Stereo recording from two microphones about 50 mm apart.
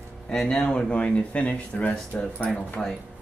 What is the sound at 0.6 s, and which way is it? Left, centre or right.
Speech, centre.